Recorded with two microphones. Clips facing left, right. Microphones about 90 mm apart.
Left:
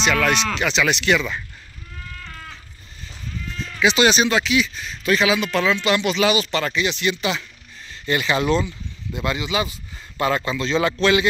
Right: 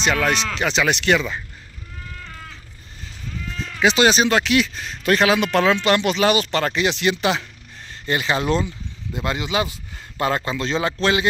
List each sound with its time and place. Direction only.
0.0 s speech: 35° right (ahead or behind)
3.8 s speech: 40° right (ahead or behind)
4.4 s speech: 70° right (ahead or behind)
8.1 s speech: 35° right (ahead or behind)